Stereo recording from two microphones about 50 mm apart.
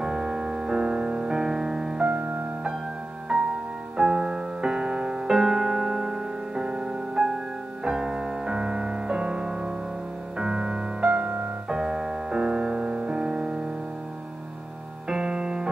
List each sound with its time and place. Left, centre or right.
0.0 s music: centre
3.3 s music: centre
11.1 s music: right
11.7 s music: centre
15.0 s music: centre